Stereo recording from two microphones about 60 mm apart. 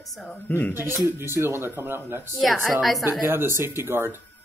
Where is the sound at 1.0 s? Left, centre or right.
Right.